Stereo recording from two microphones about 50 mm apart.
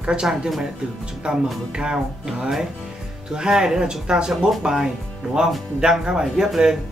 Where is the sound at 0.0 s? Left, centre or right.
Centre.